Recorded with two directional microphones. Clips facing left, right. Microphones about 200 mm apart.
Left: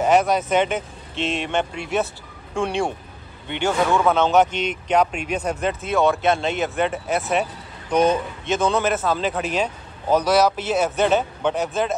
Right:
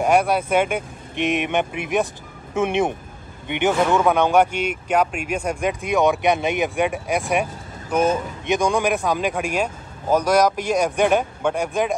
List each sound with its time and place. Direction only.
0.0 s speech: 10° right (ahead or behind)